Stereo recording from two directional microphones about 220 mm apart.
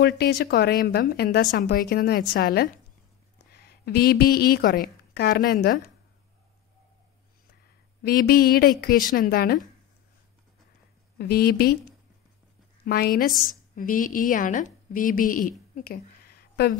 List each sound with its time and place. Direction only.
0.0 s a woman's voice: 45° left (ahead or behind)
8.0 s speech: 45° left (ahead or behind)
11.1 s speech: 45° left (ahead or behind)
12.8 s a woman's voice: 45° left (ahead or behind)
15.7 s a sound: 40° left (ahead or behind)